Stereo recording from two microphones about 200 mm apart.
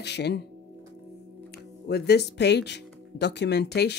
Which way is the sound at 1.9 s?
55° left (ahead or behind).